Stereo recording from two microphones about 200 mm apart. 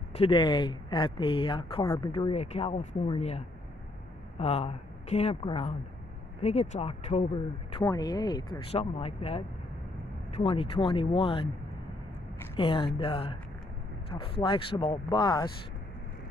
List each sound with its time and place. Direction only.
0.1 s speech: 25° left (ahead or behind)
7.7 s speech: 20° left (ahead or behind)
12.5 s speech: 25° left (ahead or behind)
14.4 s speech: 25° left (ahead or behind)